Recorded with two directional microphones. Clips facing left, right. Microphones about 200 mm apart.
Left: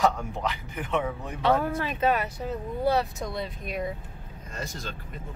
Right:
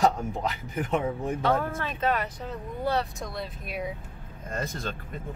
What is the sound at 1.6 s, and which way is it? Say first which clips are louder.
Speech: left 3 dB; 10° left (ahead or behind).